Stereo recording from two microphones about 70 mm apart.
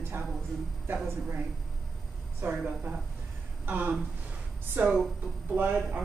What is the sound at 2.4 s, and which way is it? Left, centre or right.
Speech, right.